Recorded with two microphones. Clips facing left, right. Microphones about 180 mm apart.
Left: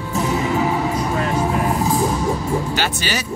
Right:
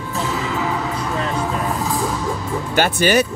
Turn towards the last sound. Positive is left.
turn(degrees=-55)  # may be behind; listen again after turning